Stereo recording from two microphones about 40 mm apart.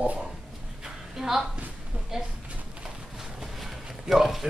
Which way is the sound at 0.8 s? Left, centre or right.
Centre.